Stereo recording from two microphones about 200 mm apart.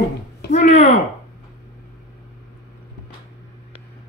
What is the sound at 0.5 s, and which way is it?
Speech, 35° left (ahead or behind).